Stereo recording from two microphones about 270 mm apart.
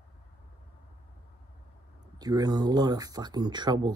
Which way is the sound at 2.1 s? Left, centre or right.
Centre.